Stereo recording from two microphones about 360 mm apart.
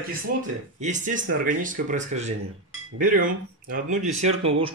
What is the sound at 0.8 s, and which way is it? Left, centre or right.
Speech, right.